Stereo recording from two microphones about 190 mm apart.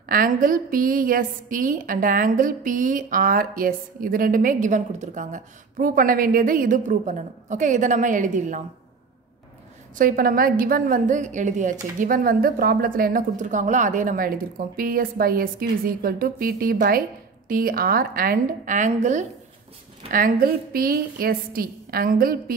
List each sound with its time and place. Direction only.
0.1 s a woman's voice: 50° right (ahead or behind)
9.9 s a woman's voice: 50° right (ahead or behind)
20.1 s a woman's voice: 50° right (ahead or behind)